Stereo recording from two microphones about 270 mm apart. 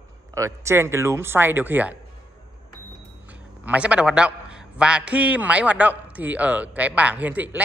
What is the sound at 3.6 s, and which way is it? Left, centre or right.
A man's voice, centre.